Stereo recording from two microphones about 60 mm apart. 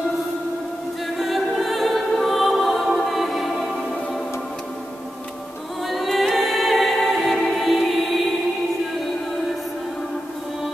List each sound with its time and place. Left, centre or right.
1.1 s music: centre
5.9 s music: centre